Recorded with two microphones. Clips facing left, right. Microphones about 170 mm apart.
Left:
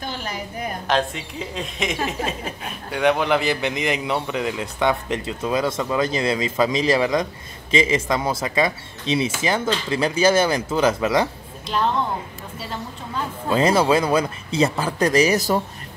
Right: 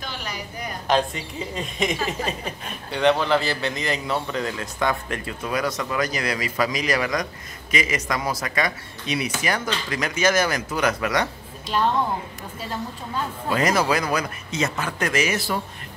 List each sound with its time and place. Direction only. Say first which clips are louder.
0.0 s a sound: left 4 dB; 50° left (ahead or behind)
0.8 s a woman's voice: right 1 dB; centre (ahead or behind); by 11.2 s 25° left (ahead or behind)
13.5 s speech: left 4 dB; 25° left (ahead or behind)